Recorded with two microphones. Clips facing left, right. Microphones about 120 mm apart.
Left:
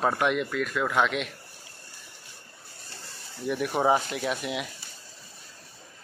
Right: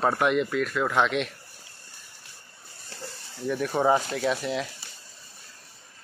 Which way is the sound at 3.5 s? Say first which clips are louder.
Right 1 dB; 10° left (ahead or behind).